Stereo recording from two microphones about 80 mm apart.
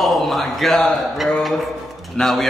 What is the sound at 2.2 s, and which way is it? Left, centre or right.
Speech, centre.